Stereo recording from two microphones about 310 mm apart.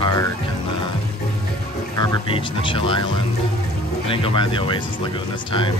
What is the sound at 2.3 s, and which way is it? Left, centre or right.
Speech, centre.